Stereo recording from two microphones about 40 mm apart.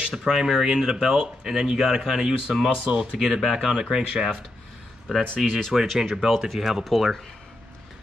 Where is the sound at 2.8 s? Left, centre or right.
Right.